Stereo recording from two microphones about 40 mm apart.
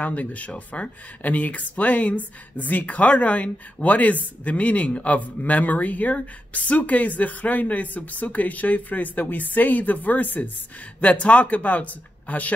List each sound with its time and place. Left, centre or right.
0.0 s speech: left
11.0 s speech: left